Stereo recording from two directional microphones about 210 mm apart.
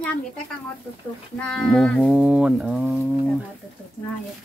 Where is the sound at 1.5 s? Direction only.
Centre (ahead or behind).